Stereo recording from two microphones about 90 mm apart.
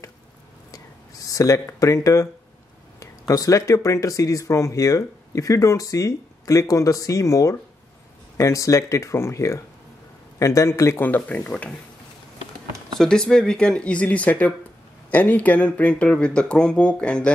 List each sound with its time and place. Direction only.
0.7 s whispering: 40° left (ahead or behind)
3.0 s speech: 40° left (ahead or behind)
11.1 s speech: 20° left (ahead or behind)
12.9 s speech: 5° left (ahead or behind)